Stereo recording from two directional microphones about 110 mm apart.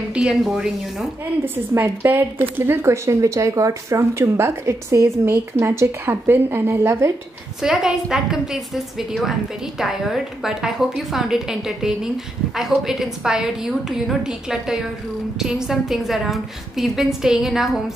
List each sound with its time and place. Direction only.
0.1 s a woman's voice: 5° right (ahead or behind)
1.4 s a woman's voice: 20° right (ahead or behind)
7.6 s a woman's voice: 5° right (ahead or behind)